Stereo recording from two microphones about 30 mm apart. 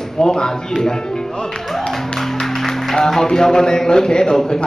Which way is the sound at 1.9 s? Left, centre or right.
Centre.